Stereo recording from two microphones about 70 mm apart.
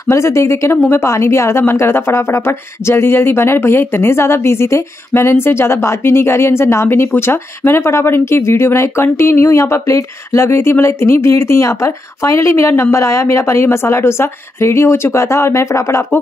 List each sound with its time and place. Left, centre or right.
0.0 s speech: left